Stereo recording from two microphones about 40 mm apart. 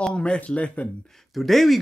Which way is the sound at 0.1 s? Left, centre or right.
Left.